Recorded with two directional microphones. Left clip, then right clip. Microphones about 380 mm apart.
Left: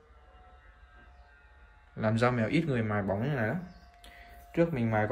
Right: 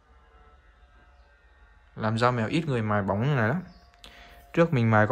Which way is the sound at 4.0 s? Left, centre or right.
Centre.